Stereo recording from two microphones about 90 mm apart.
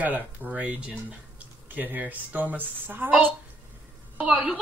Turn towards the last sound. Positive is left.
turn(degrees=-5)  # may be behind; listen again after turning